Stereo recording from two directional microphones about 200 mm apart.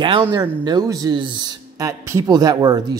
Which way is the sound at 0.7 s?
20° right (ahead or behind).